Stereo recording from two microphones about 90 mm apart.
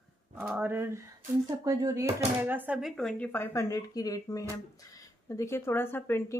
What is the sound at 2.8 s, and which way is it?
Speech, centre (ahead or behind).